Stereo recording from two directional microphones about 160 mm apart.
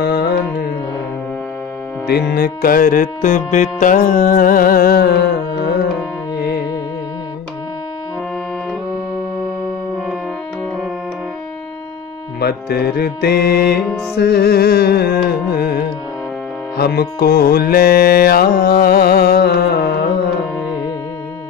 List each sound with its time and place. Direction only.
0.0 s music: 75° left (ahead or behind)
2.0 s music: 90° left
12.4 s music: 80° left